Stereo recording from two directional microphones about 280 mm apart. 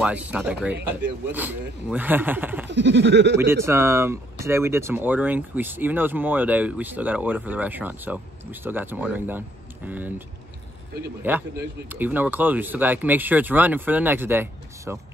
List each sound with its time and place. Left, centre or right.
0.0 s speech: centre
2.7 s a sound: right
3.3 s speech: centre
11.3 s speech: centre